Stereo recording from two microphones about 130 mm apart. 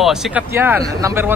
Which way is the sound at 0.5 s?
15° right (ahead or behind).